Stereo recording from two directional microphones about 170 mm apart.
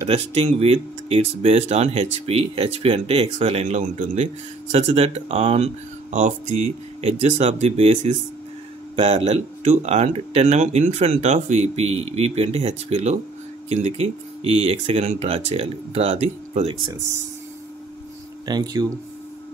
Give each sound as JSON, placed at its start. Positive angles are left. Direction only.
{"t": 0.1, "sound": "speech", "side_deg": -35}
{"t": 18.4, "sound": "speech", "side_deg": -25}